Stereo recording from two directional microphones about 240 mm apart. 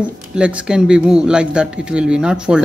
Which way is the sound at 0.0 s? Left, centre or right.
Centre.